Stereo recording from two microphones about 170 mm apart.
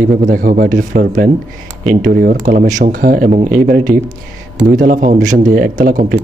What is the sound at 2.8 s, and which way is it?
A man's voice, 55° right (ahead or behind).